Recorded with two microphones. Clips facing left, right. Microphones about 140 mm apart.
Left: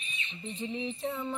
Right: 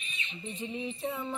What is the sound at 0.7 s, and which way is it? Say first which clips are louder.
Music: even; centre (ahead or behind).